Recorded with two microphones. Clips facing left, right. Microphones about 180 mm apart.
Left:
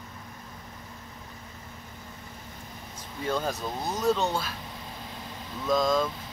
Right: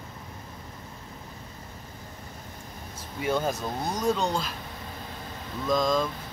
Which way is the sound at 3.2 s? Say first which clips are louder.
Right 2 dB; 15° right (ahead or behind).